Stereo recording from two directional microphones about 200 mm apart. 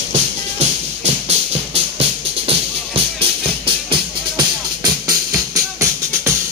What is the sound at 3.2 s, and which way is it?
Music, 25° right (ahead or behind).